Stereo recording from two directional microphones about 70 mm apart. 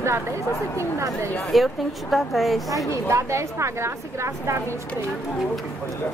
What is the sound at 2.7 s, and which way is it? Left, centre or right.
A woman's voice, right.